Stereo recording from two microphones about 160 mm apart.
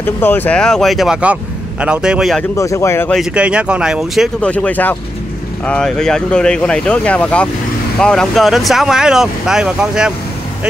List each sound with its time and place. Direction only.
0.0 s speech: 10° left (ahead or behind)
2.5 s speech: 20° left (ahead or behind)
3.1 s speech: 5° right (ahead or behind)